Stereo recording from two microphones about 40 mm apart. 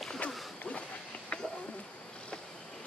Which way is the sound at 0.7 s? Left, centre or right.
Left.